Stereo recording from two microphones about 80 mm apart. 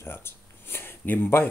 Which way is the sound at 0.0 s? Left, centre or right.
Left.